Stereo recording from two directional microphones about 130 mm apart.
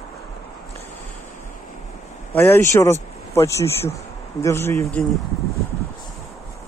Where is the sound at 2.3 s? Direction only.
20° left (ahead or behind).